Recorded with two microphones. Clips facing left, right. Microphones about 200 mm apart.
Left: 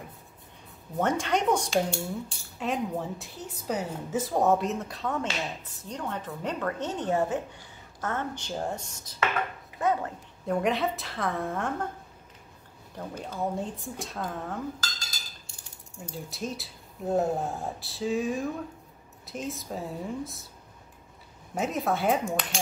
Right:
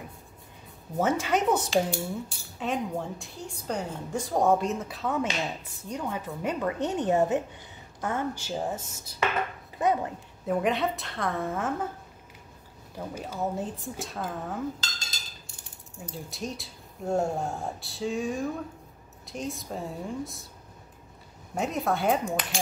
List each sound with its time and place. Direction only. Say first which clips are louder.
0.9 s a woman's voice: right 1 dB; 5° right (ahead or behind)
9.8 s a woman's voice: right 1 dB; 15° right (ahead or behind)
10.4 s a woman's voice: even; centre (ahead or behind)
12.9 s a woman's voice: right 1 dB; 10° right (ahead or behind)
14.8 s dishes: left 1 dB; 25° right (ahead or behind)
16.0 s a woman's voice: left 1 dB; centre (ahead or behind)
21.5 s a woman's voice: even; centre (ahead or behind)